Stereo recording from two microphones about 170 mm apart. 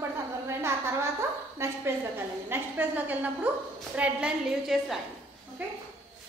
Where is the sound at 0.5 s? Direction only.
15° right (ahead or behind).